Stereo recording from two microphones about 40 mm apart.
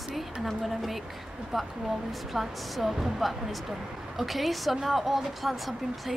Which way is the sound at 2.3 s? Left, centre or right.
Centre.